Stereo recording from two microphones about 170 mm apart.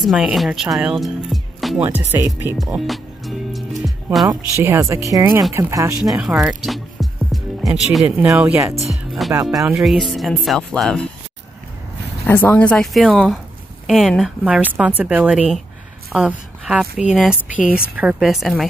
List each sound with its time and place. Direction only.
0.0 s speech: centre (ahead or behind)
2.1 s a woman's voice: 15° right (ahead or behind)
2.5 s music: centre (ahead or behind)
4.3 s a woman's voice: 15° right (ahead or behind)
6.0 s a woman's voice: 5° right (ahead or behind)
8.8 s music: centre (ahead or behind)
9.3 s speech: 20° right (ahead or behind)
9.7 s speech: centre (ahead or behind)
12.3 s a woman's voice: 10° left (ahead or behind)